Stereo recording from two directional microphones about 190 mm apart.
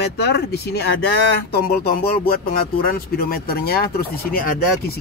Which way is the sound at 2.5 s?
50° left (ahead or behind).